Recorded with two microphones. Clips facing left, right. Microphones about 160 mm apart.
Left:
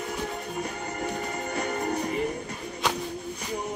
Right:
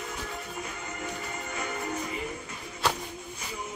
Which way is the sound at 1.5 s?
35° left (ahead or behind).